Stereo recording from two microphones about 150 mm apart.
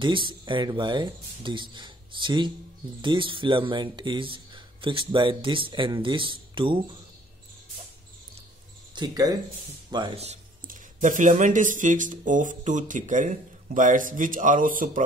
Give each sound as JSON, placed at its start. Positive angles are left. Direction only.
{"t": 0.0, "sound": "speech", "side_deg": -35}
{"t": 8.9, "sound": "speech", "side_deg": -25}
{"t": 10.7, "sound": "speech", "side_deg": -60}